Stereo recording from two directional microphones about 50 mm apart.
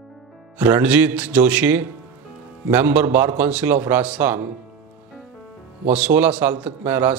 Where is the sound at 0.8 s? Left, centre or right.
Right.